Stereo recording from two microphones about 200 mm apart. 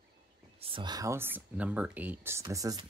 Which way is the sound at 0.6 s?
25° right (ahead or behind).